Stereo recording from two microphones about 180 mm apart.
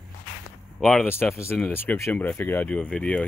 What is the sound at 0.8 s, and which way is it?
Speech, 5° left (ahead or behind).